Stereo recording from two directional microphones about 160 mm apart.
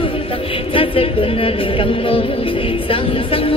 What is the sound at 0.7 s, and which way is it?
A woman's voice, 35° left (ahead or behind).